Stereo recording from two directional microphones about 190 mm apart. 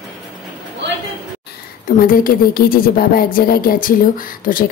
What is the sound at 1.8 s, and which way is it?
Speech, 50° left (ahead or behind).